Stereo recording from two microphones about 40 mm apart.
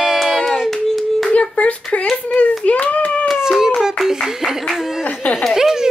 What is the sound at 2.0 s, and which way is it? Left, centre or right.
Speech, centre.